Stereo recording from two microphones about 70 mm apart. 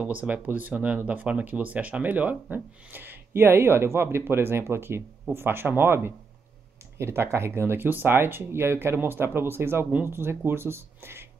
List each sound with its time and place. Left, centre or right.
0.0 s speech: right